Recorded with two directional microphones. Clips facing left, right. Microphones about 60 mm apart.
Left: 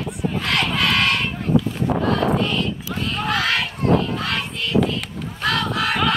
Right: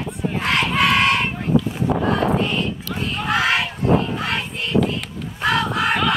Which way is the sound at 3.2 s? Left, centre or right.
Centre.